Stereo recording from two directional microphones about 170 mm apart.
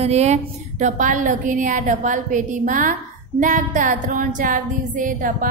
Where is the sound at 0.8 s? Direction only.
50° right (ahead or behind).